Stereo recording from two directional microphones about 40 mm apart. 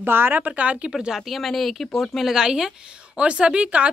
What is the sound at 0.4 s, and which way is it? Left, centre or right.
Speech, right.